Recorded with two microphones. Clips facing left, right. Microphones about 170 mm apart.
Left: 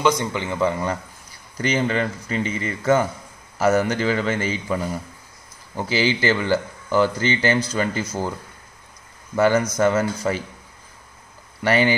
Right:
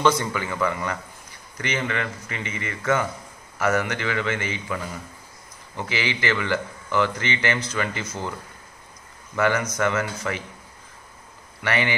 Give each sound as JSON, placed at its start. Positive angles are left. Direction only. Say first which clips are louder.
{"t": 0.0, "sound": "a man's voice", "louder": "left 1 dB", "side_deg": 20}
{"t": 5.8, "sound": "speech", "louder": "left 6 dB", "side_deg": 30}
{"t": 9.4, "sound": "speech", "louder": "left 5 dB", "side_deg": 35}
{"t": 11.6, "sound": "speech", "louder": "left 6 dB", "side_deg": 35}